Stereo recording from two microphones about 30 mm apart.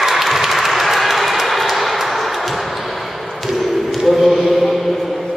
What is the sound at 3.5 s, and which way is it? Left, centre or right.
Chant, centre.